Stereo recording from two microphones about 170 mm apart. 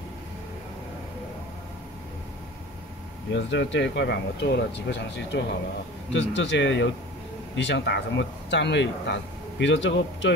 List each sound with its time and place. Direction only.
3.3 s speech: 90° left